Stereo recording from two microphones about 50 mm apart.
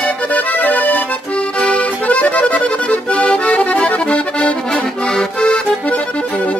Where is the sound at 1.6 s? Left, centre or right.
Left.